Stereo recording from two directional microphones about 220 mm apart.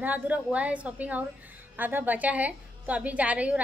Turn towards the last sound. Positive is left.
turn(degrees=-5)  # may be behind; listen again after turning